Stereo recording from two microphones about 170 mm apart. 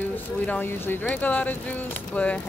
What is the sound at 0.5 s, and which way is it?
Speech, 10° left (ahead or behind).